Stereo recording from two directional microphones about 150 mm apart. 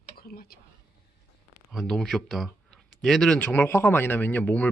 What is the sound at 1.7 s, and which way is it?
Speech, centre (ahead or behind).